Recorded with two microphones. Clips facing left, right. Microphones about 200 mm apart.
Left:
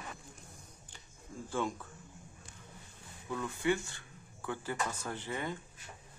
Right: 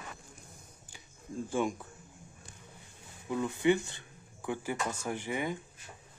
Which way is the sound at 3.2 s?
15° right (ahead or behind).